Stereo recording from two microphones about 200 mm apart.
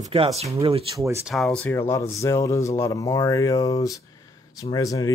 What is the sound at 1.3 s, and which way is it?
Speech, centre (ahead or behind).